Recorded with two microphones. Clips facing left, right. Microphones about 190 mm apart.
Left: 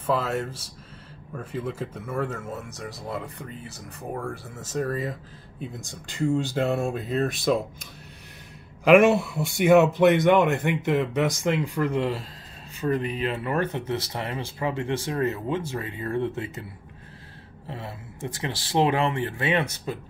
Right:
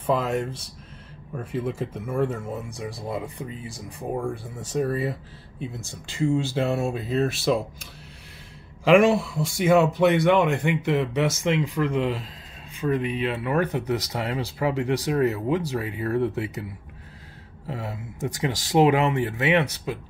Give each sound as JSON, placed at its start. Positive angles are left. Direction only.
{"t": 0.0, "sound": "speech", "side_deg": -10}
{"t": 5.7, "sound": "speech", "side_deg": 15}
{"t": 6.1, "sound": "speech", "side_deg": 0}
{"t": 9.3, "sound": "speech", "side_deg": 5}
{"t": 12.8, "sound": "speech", "side_deg": -10}
{"t": 17.6, "sound": "speech", "side_deg": -15}